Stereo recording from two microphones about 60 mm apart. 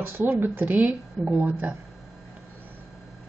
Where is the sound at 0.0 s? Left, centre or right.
Right.